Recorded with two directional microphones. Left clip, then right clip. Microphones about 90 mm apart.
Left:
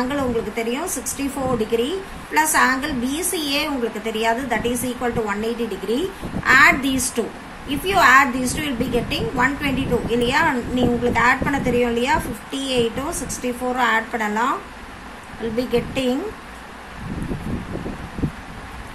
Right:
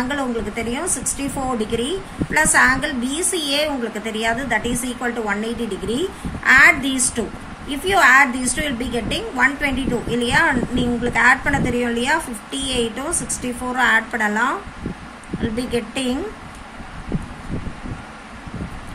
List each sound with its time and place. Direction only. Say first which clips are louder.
0.0 s a woman's voice: left 1 dB; 45° right (ahead or behind)
15.5 s a woman's voice: left 3 dB; 45° right (ahead or behind)